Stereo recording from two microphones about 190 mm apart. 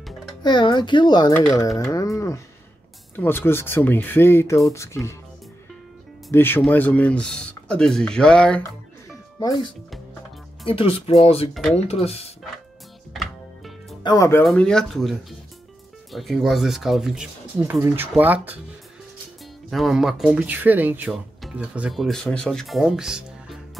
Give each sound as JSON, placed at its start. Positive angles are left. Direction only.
{"t": 0.4, "sound": "speech", "side_deg": 25}
{"t": 6.3, "sound": "speech", "side_deg": 10}
{"t": 9.4, "sound": "speech", "side_deg": 20}
{"t": 13.1, "sound": "music", "side_deg": 0}
{"t": 14.0, "sound": "speech", "side_deg": 20}
{"t": 14.4, "sound": "speech", "side_deg": 5}
{"t": 19.7, "sound": "speech", "side_deg": 0}